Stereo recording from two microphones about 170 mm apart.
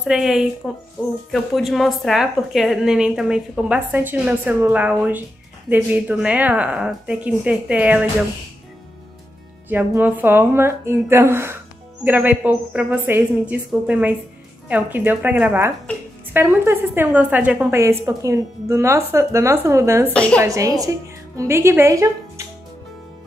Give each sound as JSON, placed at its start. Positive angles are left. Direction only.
{"t": 0.0, "sound": "a woman's voice", "side_deg": -5}
{"t": 9.7, "sound": "a woman's voice", "side_deg": -10}
{"t": 20.1, "sound": "a woman's voice", "side_deg": 5}
{"t": 20.3, "sound": "a woman's voice", "side_deg": -20}